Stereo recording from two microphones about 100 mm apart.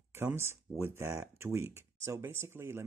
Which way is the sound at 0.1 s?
25° right (ahead or behind).